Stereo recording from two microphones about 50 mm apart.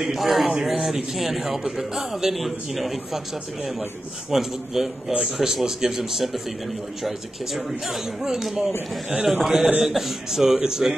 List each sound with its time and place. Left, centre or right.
0.0 s a man's voice: centre
4.3 s a man's voice: centre